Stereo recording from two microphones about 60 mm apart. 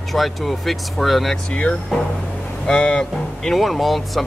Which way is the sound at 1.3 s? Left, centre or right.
Centre.